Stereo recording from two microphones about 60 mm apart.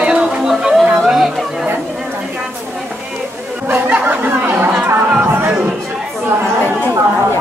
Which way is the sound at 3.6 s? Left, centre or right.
Right.